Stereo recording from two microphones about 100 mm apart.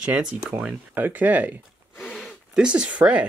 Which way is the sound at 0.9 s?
20° right (ahead or behind).